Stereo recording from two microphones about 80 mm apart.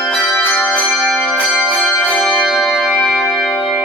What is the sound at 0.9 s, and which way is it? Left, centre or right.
Music, centre.